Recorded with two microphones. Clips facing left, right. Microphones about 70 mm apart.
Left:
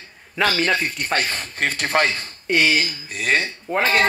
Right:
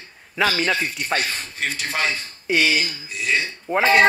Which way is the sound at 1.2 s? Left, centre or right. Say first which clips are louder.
Left 3 dB; left.